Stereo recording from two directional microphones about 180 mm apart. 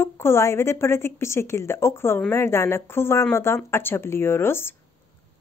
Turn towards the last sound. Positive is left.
turn(degrees=15)  # may be behind; listen again after turning